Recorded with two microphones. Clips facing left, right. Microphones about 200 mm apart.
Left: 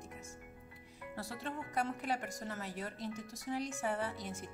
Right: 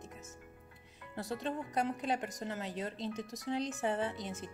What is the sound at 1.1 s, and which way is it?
A woman's voice, 20° right (ahead or behind).